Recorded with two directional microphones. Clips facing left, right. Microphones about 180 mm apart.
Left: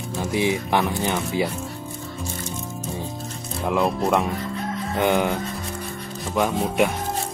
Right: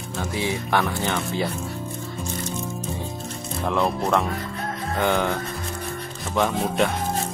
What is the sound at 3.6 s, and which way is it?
Speech, 5° left (ahead or behind).